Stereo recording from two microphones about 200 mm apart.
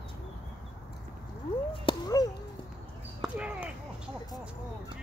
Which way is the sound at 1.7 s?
20° left (ahead or behind).